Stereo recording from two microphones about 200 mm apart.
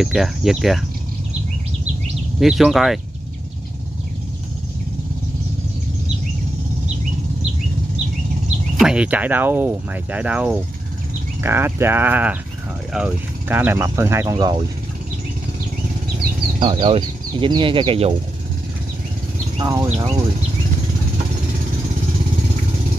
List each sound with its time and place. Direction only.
0.0 s speech: centre (ahead or behind)
2.4 s speech: centre (ahead or behind)
8.7 s speech: 5° right (ahead or behind)
14.3 s speech: 25° right (ahead or behind)
16.5 s speech: 25° right (ahead or behind)
19.6 s speech: 20° right (ahead or behind)